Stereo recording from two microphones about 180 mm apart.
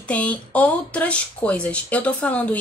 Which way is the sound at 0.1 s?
5° left (ahead or behind).